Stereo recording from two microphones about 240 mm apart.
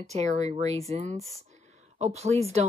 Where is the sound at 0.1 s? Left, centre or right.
Right.